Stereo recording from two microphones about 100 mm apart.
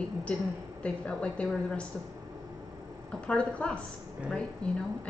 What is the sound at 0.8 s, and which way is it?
A woman's voice, 10° left (ahead or behind).